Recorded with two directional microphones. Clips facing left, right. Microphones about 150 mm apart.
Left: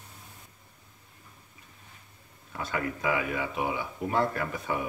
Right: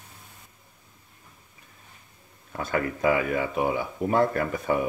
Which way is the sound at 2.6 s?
45° right (ahead or behind).